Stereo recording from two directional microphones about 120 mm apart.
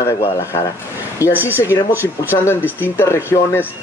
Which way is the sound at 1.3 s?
15° right (ahead or behind).